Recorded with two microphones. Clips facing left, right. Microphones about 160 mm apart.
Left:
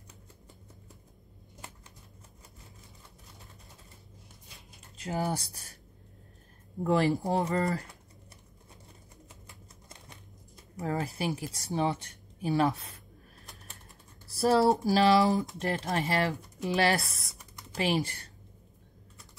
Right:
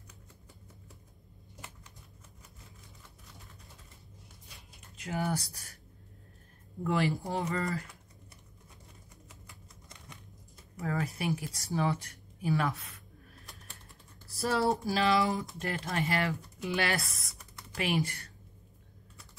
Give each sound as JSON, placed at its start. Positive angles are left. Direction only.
{"t": 4.9, "sound": "speech", "side_deg": 30}
{"t": 6.8, "sound": "speech", "side_deg": 35}
{"t": 9.3, "sound": "typewriter", "side_deg": 25}
{"t": 10.8, "sound": "speech", "side_deg": 30}
{"t": 14.4, "sound": "speech", "side_deg": 30}